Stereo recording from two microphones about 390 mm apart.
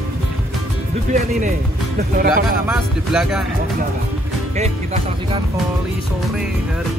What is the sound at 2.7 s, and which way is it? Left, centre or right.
Speech, centre.